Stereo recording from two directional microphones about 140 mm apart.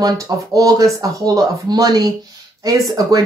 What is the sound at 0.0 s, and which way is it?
Speech, 25° right (ahead or behind).